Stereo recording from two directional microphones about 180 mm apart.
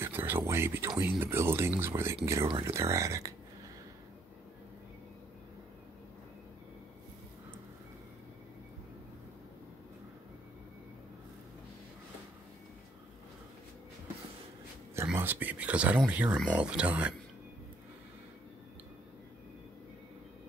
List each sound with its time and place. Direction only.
0.0 s a sound: 10° right (ahead or behind)
2.6 s speech: 15° right (ahead or behind)
15.0 s speech: 10° right (ahead or behind)